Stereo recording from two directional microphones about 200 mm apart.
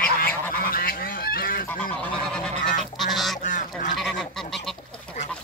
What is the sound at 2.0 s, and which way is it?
Goose, 5° left (ahead or behind).